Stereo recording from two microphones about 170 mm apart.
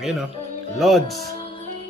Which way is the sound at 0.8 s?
Centre (ahead or behind).